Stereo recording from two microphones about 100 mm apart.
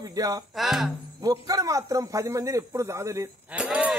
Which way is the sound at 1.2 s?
35° right (ahead or behind).